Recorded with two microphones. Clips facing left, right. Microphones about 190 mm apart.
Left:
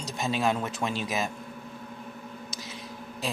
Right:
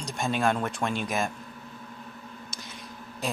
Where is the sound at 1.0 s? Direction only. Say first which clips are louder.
Right 1 dB; 50° right (ahead or behind).